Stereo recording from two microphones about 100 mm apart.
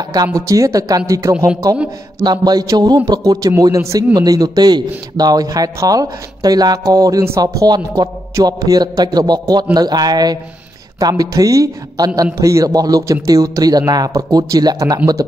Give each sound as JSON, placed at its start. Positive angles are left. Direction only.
{"t": 0.0, "sound": "a man's voice", "side_deg": -40}
{"t": 2.2, "sound": "a man's voice", "side_deg": -45}